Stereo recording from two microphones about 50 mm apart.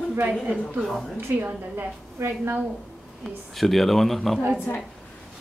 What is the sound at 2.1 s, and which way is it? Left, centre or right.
Speech, right.